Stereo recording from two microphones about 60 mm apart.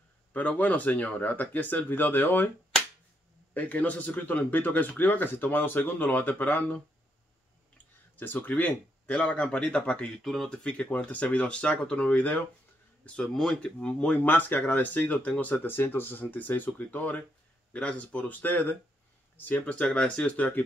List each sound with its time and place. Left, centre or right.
0.3 s speech: left
3.5 s speech: left
14.2 s speech: left